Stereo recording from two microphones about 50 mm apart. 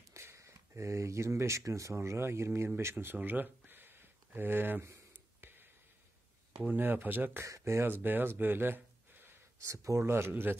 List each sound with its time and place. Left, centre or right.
0.1 s speech: right
3.2 s a sound: right
6.7 s speech: right
7.4 s speech: right
7.8 s speech: right
9.6 s speech: right